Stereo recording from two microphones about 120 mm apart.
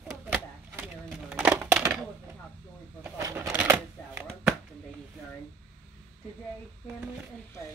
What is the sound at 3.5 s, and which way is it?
Shuffling cards, 10° right (ahead or behind).